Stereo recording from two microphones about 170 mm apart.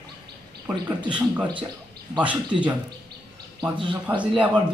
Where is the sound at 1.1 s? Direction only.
10° right (ahead or behind).